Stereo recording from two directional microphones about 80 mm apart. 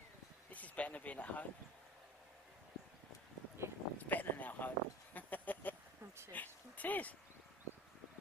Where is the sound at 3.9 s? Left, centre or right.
Left.